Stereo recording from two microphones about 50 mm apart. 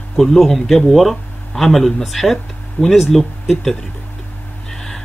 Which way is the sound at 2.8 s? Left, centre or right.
Left.